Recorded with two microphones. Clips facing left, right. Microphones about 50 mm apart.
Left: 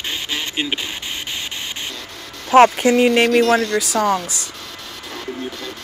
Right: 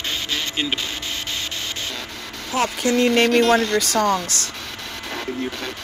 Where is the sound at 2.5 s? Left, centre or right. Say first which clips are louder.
Left 12 dB; left.